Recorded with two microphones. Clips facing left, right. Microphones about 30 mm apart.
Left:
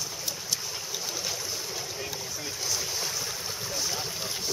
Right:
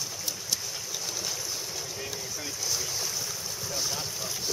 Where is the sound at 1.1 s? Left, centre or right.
Centre.